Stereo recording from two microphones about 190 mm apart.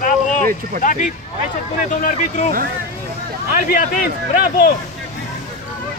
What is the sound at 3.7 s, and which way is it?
Speech, 45° left (ahead or behind).